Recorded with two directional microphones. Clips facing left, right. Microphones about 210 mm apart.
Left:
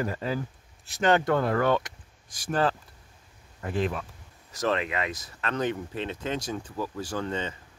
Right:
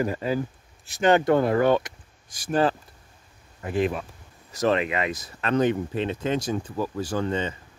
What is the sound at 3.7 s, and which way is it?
Speech, 10° right (ahead or behind).